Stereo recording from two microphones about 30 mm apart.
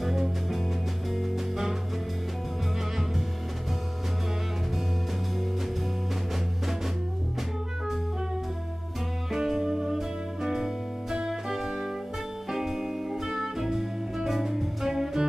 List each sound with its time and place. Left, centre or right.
0.0 s music: centre
9.3 s music: centre